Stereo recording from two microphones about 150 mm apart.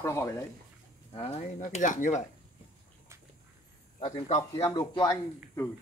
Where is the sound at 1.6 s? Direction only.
60° left (ahead or behind).